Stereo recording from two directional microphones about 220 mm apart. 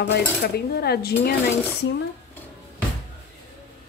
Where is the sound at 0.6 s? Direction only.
45° left (ahead or behind).